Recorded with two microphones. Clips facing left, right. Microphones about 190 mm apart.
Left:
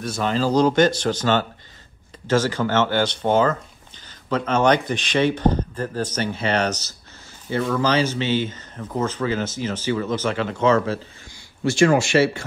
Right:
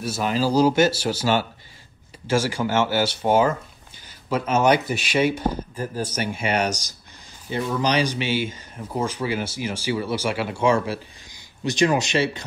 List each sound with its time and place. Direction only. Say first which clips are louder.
0.0 s speech: left 1 dB; 10° right (ahead or behind)